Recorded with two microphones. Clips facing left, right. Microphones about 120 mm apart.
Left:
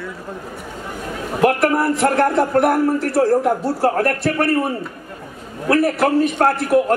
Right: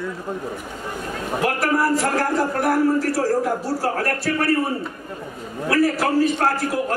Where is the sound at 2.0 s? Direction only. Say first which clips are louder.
Left 5 dB; 65° left (ahead or behind).